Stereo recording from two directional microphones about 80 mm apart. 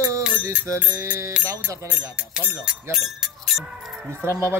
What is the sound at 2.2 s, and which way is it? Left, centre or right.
Speech, centre.